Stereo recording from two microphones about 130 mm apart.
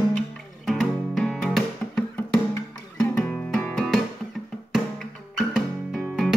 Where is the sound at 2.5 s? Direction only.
20° left (ahead or behind).